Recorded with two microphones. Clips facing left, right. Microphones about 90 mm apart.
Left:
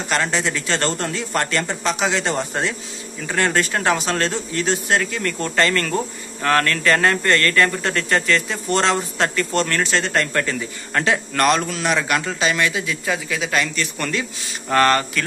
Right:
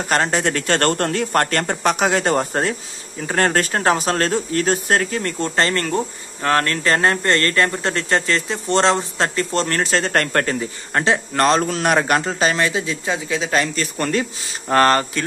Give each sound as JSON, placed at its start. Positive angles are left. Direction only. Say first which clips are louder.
{"t": 0.1, "sound": "a man's voice", "louder": "right 3 dB", "side_deg": -45}
{"t": 10.1, "sound": "speech", "louder": "right 2 dB", "side_deg": -50}